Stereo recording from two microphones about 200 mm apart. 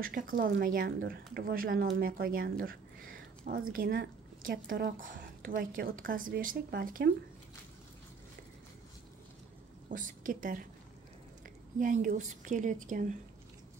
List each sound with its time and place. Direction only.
0.0 s speech: 45° right (ahead or behind)
9.8 s a woman's voice: 40° right (ahead or behind)